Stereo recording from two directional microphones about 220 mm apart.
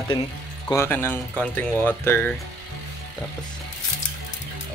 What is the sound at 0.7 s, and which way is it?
Speech, 10° left (ahead or behind).